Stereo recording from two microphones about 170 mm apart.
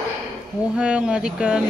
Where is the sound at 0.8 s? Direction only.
5° right (ahead or behind).